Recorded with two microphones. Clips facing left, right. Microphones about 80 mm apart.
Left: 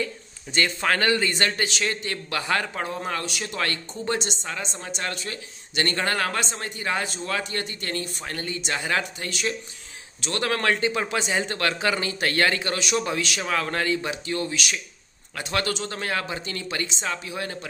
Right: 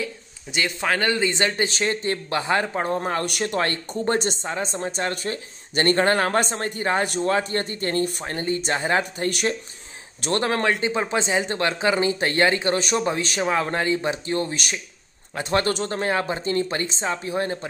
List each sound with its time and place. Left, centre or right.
0.0 s a man's voice: centre
1.2 s a man's voice: right
2.9 s speech: right
3.3 s speech: right
3.5 s speech: right
4.5 s a man's voice: right
10.2 s speech: right
10.8 s a man's voice: right
16.0 s a man's voice: right